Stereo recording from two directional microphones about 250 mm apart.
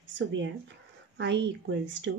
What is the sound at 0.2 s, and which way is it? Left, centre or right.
Speech, right.